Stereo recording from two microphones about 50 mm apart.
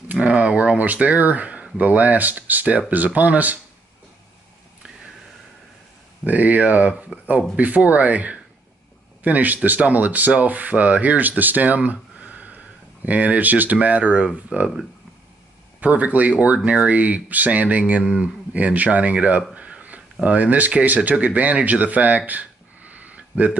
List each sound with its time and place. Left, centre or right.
0.1 s speech: right
6.2 s speech: right
15.8 s speech: right
19.5 s a sound: right
20.2 s speech: right